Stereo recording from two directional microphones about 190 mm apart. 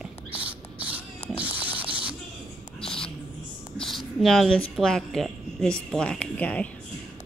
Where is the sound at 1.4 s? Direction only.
10° right (ahead or behind).